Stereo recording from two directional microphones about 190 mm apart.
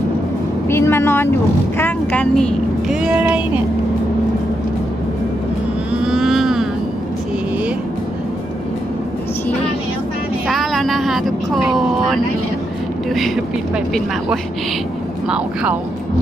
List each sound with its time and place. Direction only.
0.7 s speech: 10° left (ahead or behind); by 3.6 s 10° right (ahead or behind)
6.0 s vehicle: centre (ahead or behind)
10.5 s vehicle: centre (ahead or behind)
15.2 s speech: 5° right (ahead or behind)